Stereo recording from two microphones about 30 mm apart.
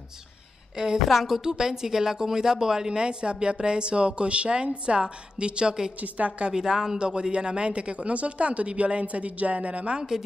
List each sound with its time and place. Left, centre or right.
0.7 s speech: right
1.0 s a woman's voice: centre
1.4 s speech: right
3.0 s speech: right
5.9 s a woman's voice: right
6.5 s speech: right